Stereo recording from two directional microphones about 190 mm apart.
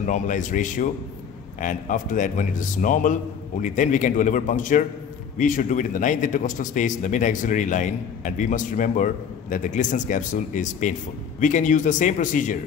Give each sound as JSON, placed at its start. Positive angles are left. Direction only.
{"t": 0.0, "sound": "a man's voice", "side_deg": 40}